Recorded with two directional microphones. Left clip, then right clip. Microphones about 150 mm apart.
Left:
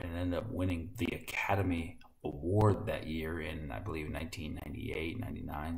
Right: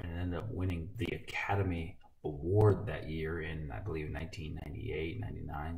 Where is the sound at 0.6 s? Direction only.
Centre (ahead or behind).